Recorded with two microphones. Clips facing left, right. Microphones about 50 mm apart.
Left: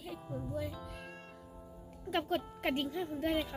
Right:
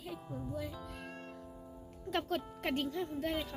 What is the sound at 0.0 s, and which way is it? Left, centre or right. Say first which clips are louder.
Music: left 1 dB; centre.